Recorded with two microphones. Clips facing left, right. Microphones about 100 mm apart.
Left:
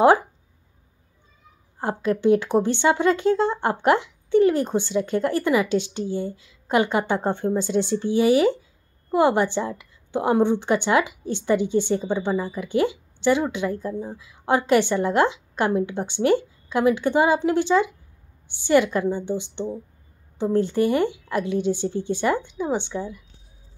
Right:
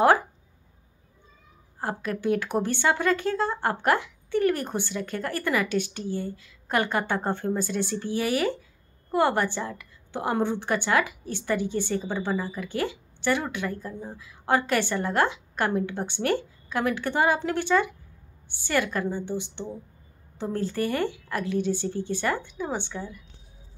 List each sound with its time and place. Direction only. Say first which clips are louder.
1.8 s a woman's voice: left 7 dB; 25° left (ahead or behind)